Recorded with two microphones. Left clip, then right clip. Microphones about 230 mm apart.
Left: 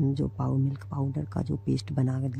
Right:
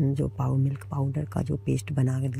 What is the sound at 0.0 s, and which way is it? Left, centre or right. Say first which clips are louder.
Speech: right 1 dB; centre.